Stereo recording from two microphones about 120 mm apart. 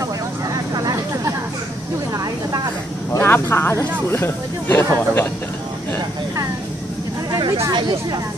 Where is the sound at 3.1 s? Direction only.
20° left (ahead or behind).